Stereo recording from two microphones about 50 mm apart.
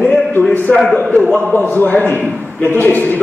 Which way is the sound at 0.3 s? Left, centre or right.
Left.